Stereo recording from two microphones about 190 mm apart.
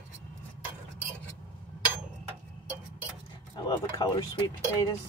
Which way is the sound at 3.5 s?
20° left (ahead or behind).